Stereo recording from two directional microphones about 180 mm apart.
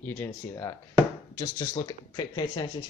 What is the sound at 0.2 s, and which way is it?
Speech, 15° left (ahead or behind).